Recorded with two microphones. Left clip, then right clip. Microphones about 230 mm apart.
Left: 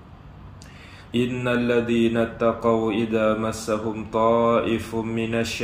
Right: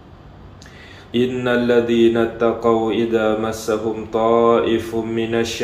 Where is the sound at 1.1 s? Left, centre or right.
Left.